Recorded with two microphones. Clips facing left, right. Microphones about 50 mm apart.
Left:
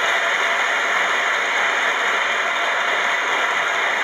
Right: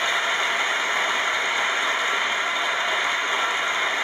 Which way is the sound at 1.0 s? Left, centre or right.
Left.